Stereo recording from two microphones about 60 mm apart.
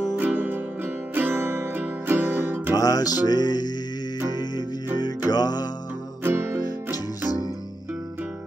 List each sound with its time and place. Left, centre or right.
0.1 s music: right
2.7 s music: left
5.3 s music: left
6.2 s music: right